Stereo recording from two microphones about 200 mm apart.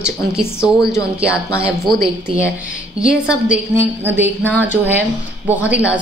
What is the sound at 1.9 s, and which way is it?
A woman's voice, centre (ahead or behind).